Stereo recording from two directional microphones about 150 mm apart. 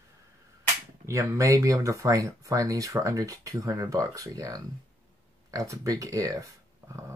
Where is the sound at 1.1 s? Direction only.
20° right (ahead or behind).